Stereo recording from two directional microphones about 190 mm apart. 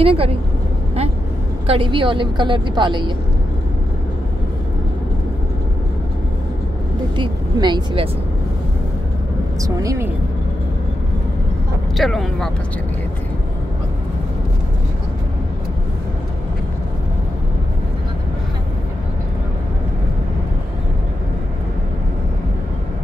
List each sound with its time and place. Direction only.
0.0 s a woman's voice: 30° right (ahead or behind)
1.7 s a woman's voice: 25° right (ahead or behind)
7.2 s a woman's voice: 25° right (ahead or behind)
9.6 s speech: 15° right (ahead or behind)
12.0 s speech: centre (ahead or behind)